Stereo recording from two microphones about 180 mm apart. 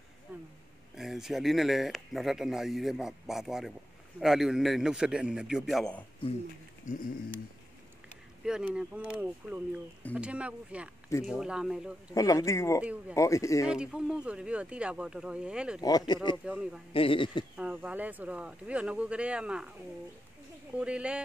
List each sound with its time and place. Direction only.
0.3 s a sound: 10° right (ahead or behind)
0.9 s speech: centre (ahead or behind)
8.5 s speech: 5° right (ahead or behind)
12.1 s speech: 20° left (ahead or behind)
13.7 s speech: 5° right (ahead or behind)
15.8 s speech: 20° left (ahead or behind)
16.4 s speech: 5° right (ahead or behind)
16.9 s speech: 30° left (ahead or behind)
17.6 s speech: 5° right (ahead or behind)
20.7 s speech: 5° right (ahead or behind)